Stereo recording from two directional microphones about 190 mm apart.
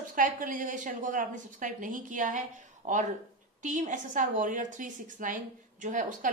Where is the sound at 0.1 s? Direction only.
45° right (ahead or behind).